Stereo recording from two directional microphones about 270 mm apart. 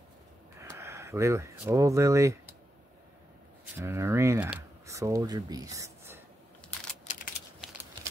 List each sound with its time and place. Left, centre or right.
0.6 s speech: centre
3.7 s speech: centre
7.1 s typing: left